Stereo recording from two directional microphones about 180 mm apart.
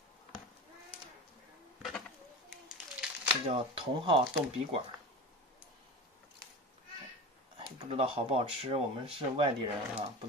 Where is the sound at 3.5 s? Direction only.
30° right (ahead or behind).